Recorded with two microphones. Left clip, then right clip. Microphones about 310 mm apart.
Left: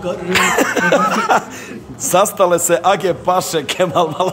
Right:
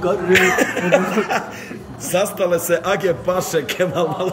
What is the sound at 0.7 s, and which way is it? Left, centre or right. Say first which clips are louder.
A man's voice: left 3 dB; left.